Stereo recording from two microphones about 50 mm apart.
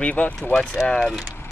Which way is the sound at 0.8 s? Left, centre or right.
Centre.